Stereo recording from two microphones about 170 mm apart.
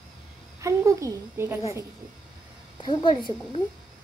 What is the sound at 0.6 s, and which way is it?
A woman's voice, 20° right (ahead or behind).